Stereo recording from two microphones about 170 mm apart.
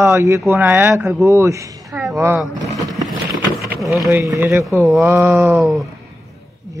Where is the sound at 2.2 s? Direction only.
15° right (ahead or behind).